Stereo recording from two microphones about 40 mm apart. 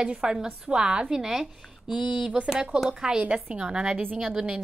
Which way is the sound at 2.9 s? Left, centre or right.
Centre.